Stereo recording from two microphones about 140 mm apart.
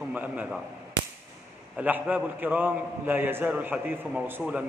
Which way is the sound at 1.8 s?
10° right (ahead or behind).